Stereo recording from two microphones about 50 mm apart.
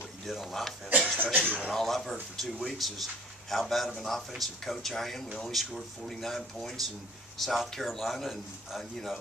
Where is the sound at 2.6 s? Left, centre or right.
Centre.